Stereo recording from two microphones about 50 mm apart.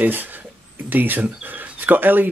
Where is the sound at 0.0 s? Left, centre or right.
Right.